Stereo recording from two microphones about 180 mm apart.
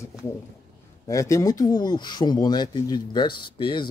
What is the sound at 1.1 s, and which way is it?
Speech, 20° left (ahead or behind).